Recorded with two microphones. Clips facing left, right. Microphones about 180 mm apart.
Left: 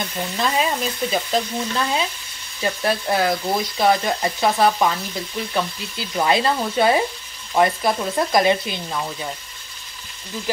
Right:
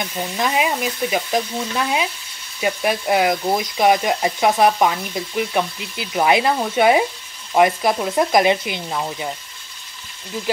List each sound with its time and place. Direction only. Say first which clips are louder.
0.4 s speech: right 1 dB; 15° right (ahead or behind)